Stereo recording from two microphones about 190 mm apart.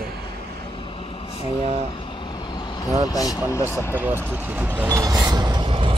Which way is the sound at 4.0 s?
10° right (ahead or behind).